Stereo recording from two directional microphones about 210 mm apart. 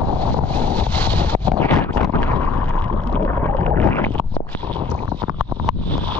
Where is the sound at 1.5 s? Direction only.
10° left (ahead or behind).